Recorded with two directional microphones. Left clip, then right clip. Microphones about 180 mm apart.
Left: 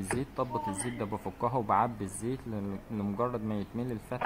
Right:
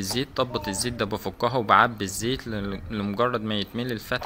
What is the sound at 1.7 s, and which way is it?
Speech, 15° right (ahead or behind).